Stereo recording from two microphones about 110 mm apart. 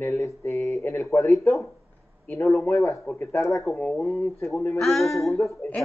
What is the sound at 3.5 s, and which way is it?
Speech, 30° left (ahead or behind).